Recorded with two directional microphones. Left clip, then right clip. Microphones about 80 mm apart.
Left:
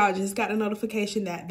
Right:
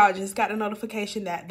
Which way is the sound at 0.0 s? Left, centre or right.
Left.